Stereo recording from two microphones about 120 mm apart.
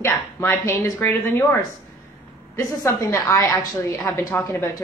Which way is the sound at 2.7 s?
30° left (ahead or behind).